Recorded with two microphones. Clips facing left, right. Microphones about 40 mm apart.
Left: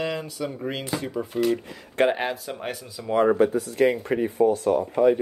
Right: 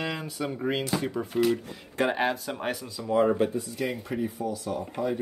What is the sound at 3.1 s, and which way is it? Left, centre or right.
Speech, left.